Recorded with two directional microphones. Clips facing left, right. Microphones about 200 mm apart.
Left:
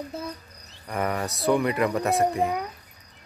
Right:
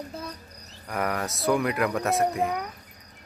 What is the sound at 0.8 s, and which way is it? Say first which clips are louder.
Speech: left 1 dB; centre (ahead or behind).